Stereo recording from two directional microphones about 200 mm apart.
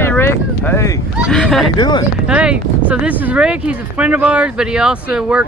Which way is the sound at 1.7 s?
20° left (ahead or behind).